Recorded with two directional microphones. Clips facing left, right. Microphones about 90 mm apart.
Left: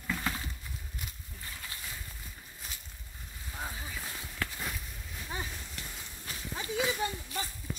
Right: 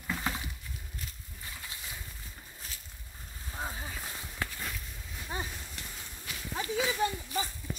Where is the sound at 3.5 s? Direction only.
25° right (ahead or behind).